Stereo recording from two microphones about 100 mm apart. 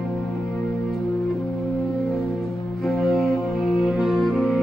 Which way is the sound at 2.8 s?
Centre (ahead or behind).